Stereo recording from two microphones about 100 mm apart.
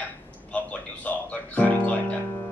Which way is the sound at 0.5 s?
15° left (ahead or behind).